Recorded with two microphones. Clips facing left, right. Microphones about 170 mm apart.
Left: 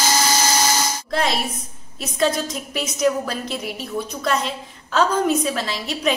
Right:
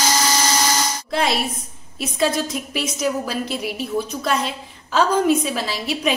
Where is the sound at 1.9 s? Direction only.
5° right (ahead or behind).